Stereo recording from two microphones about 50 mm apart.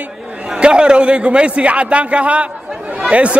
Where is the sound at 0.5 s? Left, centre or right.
Centre.